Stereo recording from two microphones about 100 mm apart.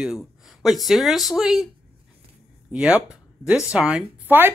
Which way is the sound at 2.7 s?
10° right (ahead or behind).